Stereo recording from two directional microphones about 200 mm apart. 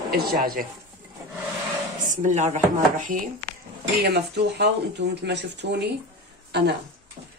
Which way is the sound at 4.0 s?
55° right (ahead or behind).